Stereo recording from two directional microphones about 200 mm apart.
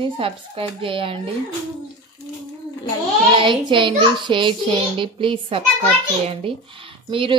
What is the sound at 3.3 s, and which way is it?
A child's voice, 25° right (ahead or behind).